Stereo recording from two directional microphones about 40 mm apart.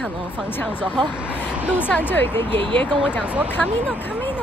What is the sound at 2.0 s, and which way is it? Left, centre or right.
Speech, left.